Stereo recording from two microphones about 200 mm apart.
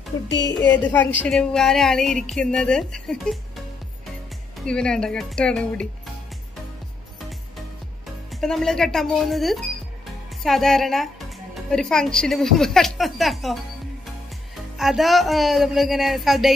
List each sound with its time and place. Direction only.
0.3 s speech: 65° left (ahead or behind)
0.6 s a woman's voice: 10° left (ahead or behind)
4.6 s a woman's voice: 5° left (ahead or behind)
8.4 s a woman's voice: centre (ahead or behind)
14.8 s a woman's voice: centre (ahead or behind)